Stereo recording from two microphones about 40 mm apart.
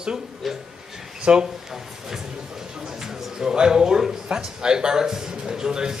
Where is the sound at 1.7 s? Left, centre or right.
Centre.